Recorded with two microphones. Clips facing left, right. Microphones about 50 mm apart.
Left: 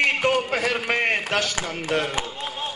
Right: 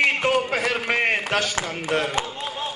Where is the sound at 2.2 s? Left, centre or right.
Centre.